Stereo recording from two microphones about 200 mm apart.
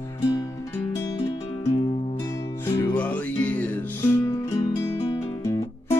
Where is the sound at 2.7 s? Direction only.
10° left (ahead or behind).